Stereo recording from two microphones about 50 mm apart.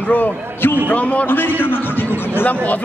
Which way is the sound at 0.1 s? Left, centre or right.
Left.